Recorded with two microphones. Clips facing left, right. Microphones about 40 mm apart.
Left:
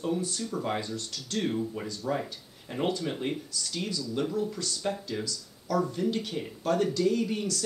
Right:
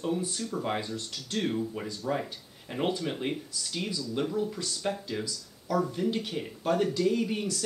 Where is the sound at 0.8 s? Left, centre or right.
Right.